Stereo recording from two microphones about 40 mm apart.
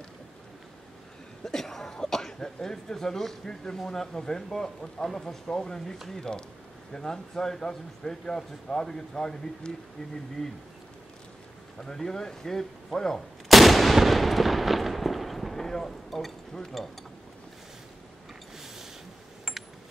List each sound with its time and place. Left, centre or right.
1.4 s speech: centre
9.6 s speech: left
11.8 s speech: centre
13.5 s gunshot: centre